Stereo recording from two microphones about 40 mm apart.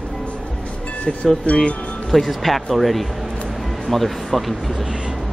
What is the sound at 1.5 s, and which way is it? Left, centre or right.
Speech, left.